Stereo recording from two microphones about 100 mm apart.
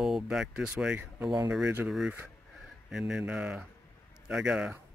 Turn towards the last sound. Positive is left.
turn(degrees=-10)  # may be behind; listen again after turning